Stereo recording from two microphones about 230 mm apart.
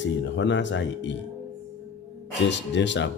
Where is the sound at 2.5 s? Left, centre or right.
Left.